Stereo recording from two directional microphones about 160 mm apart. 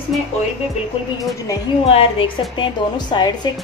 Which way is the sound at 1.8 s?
35° left (ahead or behind).